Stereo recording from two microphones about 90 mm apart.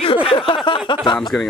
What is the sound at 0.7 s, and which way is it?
Speech, 60° left (ahead or behind).